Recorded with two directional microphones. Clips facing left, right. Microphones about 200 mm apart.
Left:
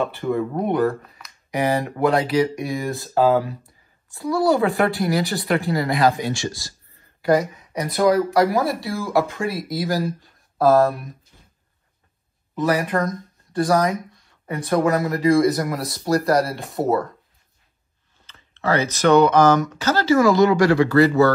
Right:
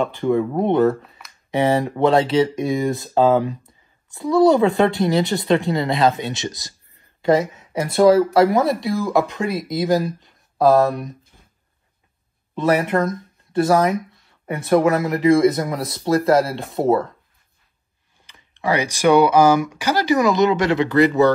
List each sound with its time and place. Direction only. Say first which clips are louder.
0.0 s speech: right 3 dB; 15° right (ahead or behind)
12.5 s speech: right 3 dB; 25° right (ahead or behind)
18.2 s speech: right 1 dB; 15° right (ahead or behind)